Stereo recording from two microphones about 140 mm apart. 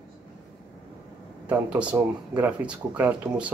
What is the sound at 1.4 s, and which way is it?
Speech, 10° right (ahead or behind).